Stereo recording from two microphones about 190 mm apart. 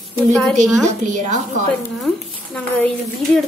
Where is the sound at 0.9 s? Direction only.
40° right (ahead or behind).